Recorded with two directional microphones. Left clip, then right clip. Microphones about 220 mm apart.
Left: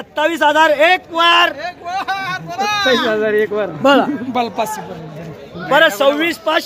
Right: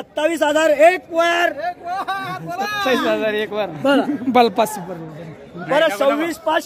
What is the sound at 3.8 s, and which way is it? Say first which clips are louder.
Speech: left 5 dB; 35° left (ahead or behind).